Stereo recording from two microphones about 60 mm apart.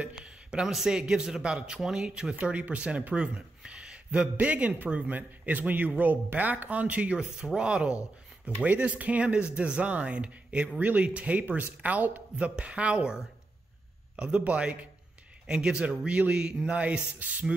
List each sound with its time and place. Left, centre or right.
0.0 s speech: centre